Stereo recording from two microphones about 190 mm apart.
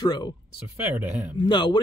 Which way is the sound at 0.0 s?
20° left (ahead or behind).